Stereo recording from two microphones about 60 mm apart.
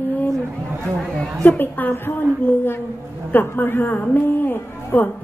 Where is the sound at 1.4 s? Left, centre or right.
Left.